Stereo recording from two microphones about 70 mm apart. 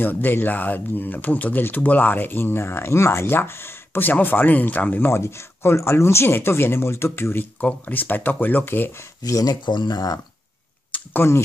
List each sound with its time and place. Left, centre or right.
0.0 s speech: left
9.2 s speech: left
11.2 s speech: left